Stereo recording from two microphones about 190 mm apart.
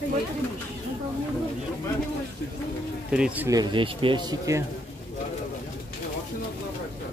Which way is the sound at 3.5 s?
25° right (ahead or behind).